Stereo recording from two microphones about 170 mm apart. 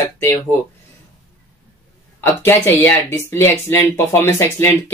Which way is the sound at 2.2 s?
15° left (ahead or behind).